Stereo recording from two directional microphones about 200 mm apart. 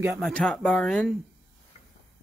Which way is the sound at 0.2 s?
5° left (ahead or behind).